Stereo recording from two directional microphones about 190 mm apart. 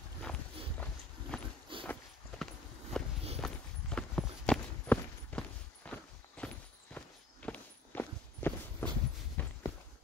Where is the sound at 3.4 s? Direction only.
5° left (ahead or behind).